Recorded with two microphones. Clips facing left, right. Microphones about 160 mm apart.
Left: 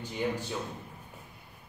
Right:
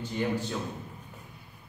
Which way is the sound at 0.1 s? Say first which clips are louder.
Right 2 dB; 10° left (ahead or behind).